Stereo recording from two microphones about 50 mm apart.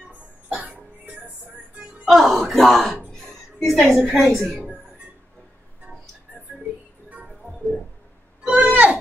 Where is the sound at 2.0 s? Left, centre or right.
Centre.